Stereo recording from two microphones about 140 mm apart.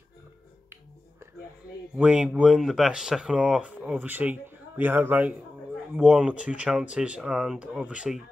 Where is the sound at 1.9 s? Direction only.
10° right (ahead or behind).